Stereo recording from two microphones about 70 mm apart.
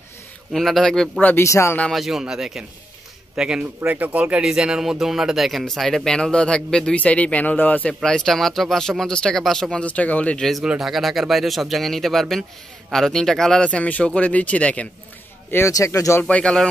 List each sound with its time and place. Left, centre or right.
0.5 s speech: centre
1.4 s speech: left
1.9 s a man's voice: centre
3.9 s speech: right; by 7.9 s left
8.0 s speech: centre
10.6 s speech: centre
13.7 s speech: centre
15.7 s speech: left
16.3 s speech: centre